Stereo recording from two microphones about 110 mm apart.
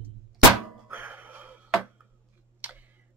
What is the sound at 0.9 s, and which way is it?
Music, 15° right (ahead or behind).